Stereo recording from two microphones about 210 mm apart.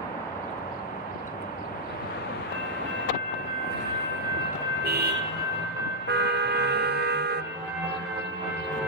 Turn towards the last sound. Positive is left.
turn(degrees=-50)  # may be behind; listen again after turning